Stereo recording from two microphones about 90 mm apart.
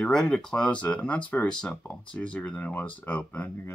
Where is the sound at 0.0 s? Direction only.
10° left (ahead or behind).